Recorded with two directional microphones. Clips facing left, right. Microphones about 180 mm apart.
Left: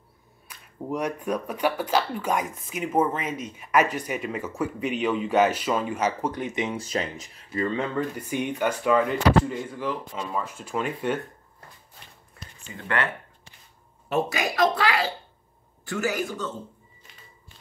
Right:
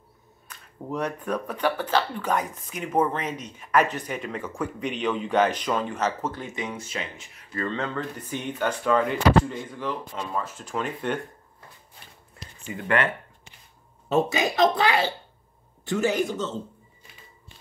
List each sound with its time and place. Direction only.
0.5 s speech: 10° left (ahead or behind)
6.8 s speech: 40° left (ahead or behind)
7.4 s speech: 15° left (ahead or behind)
12.6 s speech: 15° right (ahead or behind)